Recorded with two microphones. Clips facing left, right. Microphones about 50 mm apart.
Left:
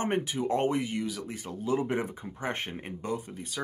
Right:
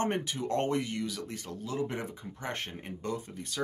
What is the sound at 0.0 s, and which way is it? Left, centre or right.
Speech, centre.